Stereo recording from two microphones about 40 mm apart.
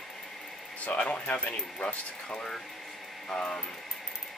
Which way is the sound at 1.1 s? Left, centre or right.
Left.